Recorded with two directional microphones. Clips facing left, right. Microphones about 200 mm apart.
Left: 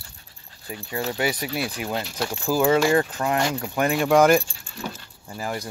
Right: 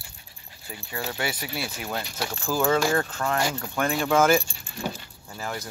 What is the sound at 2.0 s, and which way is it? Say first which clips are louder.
Speech: left 4 dB; centre (ahead or behind).